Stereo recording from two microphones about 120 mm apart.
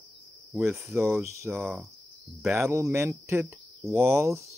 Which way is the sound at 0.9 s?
20° right (ahead or behind).